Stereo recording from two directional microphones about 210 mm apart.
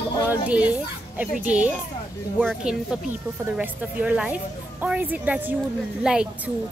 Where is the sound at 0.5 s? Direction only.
5° right (ahead or behind).